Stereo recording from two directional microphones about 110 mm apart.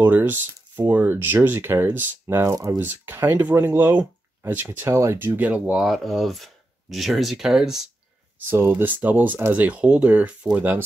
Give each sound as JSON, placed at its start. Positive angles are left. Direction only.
{"t": 0.0, "sound": "speech", "side_deg": -20}
{"t": 2.8, "sound": "speech", "side_deg": -20}
{"t": 5.8, "sound": "speech", "side_deg": 0}
{"t": 8.4, "sound": "speech", "side_deg": -20}